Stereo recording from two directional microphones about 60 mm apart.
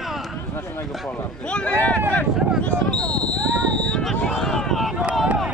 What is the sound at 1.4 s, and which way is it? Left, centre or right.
Speech, centre.